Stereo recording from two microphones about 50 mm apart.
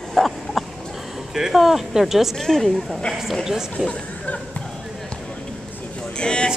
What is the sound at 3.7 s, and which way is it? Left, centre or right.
Speech, left.